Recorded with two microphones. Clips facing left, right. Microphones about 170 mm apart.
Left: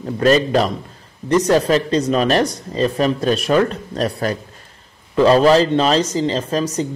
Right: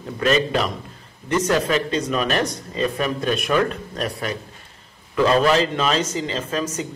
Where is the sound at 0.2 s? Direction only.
40° left (ahead or behind).